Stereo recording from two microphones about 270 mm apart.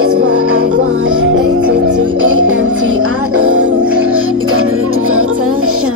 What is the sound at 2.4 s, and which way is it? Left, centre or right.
Music, right.